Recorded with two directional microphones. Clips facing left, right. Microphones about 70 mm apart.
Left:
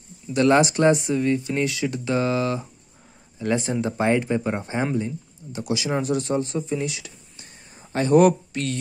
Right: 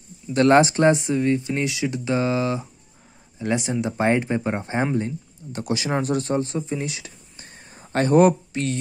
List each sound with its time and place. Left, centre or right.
0.3 s speech: right; by 3.7 s centre
4.0 s speech: right
4.9 s speech: right